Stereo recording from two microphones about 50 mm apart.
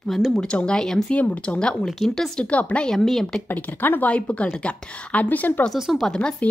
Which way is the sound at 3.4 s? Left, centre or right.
Left.